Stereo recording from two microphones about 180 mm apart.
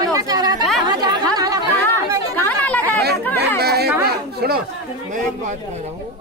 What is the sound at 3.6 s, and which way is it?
Speech, 60° right (ahead or behind).